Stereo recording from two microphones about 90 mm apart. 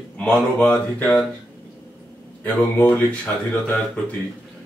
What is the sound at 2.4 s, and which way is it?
Speech, 15° left (ahead or behind).